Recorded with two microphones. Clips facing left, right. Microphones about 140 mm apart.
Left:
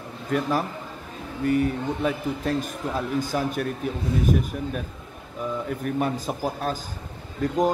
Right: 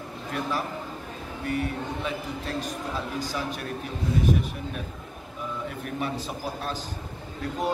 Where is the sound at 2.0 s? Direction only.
50° left (ahead or behind).